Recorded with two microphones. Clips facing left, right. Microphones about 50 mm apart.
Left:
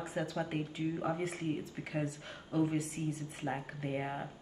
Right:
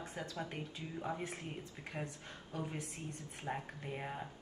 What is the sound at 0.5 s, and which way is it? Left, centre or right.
Speech, centre.